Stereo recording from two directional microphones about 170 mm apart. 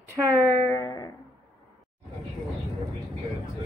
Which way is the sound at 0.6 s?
15° left (ahead or behind).